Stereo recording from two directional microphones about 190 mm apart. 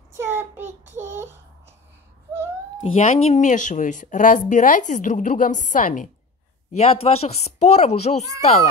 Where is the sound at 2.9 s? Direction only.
40° left (ahead or behind).